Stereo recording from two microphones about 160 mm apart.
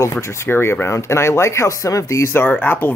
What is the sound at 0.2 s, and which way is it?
Speech, 15° left (ahead or behind).